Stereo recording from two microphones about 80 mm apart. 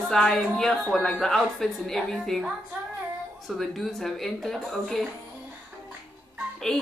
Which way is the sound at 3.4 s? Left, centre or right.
Centre.